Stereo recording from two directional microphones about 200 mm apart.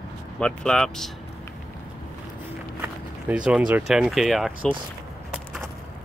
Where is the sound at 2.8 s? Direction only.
5° right (ahead or behind).